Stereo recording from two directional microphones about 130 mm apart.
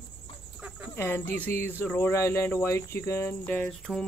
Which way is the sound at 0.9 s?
15° left (ahead or behind).